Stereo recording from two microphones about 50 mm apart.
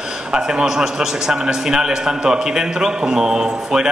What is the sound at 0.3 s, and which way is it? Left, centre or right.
Speech, centre.